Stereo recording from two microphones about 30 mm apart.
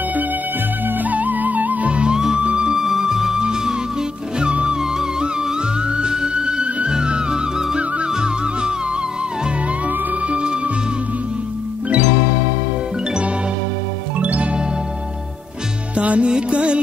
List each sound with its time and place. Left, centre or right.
0.8 s music: right
1.9 s music: right
2.8 s music: centre; by 4.7 s right
5.9 s music: right
10.3 s music: right
14.1 s music: right
16.0 s music: right
16.3 s music: right